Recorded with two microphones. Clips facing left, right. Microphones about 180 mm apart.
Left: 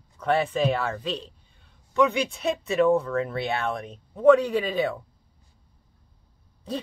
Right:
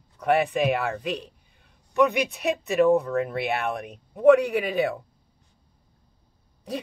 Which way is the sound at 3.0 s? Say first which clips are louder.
Right 1 dB; 15° right (ahead or behind).